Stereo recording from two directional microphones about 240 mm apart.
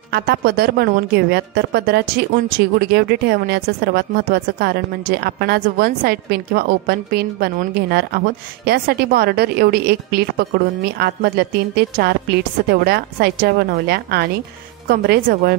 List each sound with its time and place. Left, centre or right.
0.1 s a woman's voice: right